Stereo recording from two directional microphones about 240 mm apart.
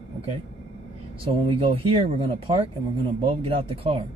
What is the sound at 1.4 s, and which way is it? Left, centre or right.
Speech, right.